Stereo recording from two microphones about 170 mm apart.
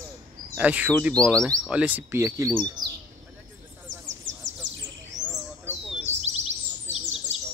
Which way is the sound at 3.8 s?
90° right.